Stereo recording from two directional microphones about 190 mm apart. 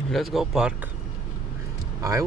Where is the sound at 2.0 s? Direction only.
15° right (ahead or behind).